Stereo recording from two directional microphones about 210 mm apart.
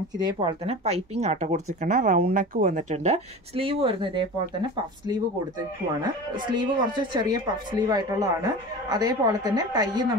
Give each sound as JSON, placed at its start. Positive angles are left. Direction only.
{"t": 0.2, "sound": "a woman's voice", "side_deg": -25}